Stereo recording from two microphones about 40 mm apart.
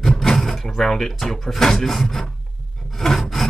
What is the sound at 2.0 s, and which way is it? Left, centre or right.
Filing, centre.